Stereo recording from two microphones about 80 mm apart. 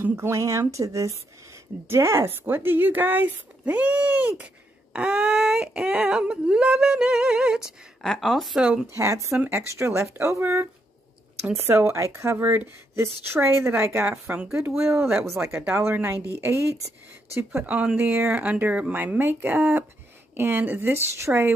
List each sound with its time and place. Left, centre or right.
0.0 s speech: right
0.3 s speech: right; by 4.3 s centre
4.9 s a sound: centre
8.0 s speech: centre
8.5 s a sound: centre
8.9 s speech: right
9.4 s speech: right
10.4 s speech: right
15.2 s speech: right
15.5 s speech: right